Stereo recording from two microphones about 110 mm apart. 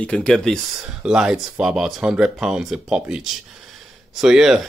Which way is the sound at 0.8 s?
5° right (ahead or behind).